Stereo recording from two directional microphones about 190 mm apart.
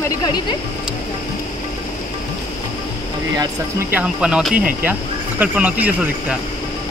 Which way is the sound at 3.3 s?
20° right (ahead or behind).